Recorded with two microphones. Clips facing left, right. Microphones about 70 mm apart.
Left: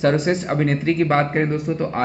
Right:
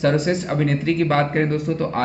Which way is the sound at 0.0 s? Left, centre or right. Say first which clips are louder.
Left 1 dB; left.